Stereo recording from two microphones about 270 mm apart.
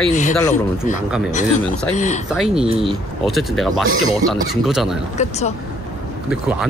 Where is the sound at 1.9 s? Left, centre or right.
Left.